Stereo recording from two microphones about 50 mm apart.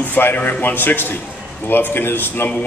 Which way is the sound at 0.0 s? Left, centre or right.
Left.